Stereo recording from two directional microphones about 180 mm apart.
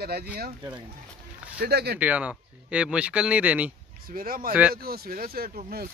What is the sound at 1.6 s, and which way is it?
Speech, 60° right (ahead or behind).